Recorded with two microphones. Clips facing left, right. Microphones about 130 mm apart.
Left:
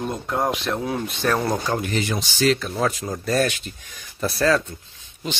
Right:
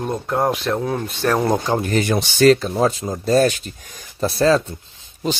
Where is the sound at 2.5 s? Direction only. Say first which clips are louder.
Right 5 dB; 35° right (ahead or behind).